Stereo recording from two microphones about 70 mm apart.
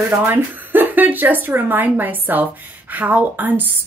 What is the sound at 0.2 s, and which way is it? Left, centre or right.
Speech, right.